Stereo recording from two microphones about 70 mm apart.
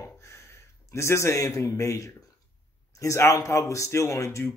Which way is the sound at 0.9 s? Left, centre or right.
Left.